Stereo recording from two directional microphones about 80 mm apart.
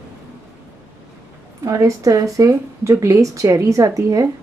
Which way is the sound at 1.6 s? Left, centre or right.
Right.